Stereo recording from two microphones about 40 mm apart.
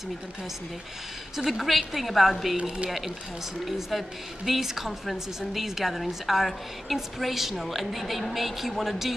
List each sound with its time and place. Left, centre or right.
1.3 s a woman's voice: centre
2.5 s speech: right
3.6 s a woman's voice: centre